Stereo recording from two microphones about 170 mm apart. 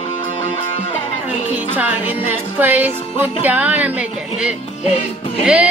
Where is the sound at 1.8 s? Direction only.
10° right (ahead or behind).